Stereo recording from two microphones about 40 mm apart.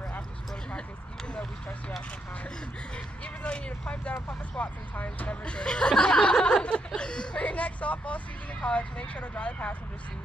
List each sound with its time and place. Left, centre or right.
3.4 s speech: left
4.3 s speech: left
7.4 s speech: left